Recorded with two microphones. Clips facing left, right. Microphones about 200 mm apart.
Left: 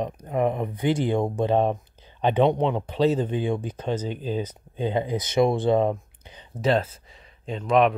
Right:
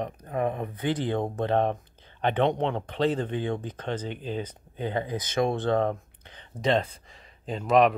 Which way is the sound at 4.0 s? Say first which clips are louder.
Left 4 dB; 40° left (ahead or behind).